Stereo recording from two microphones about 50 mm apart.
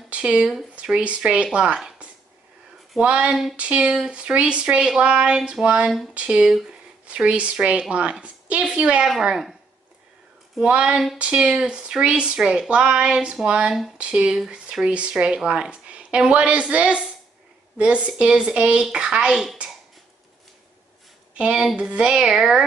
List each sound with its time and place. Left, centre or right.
0.1 s speech: right
3.0 s speech: right
9.2 s speech: centre
10.6 s speech: centre
21.7 s speech: centre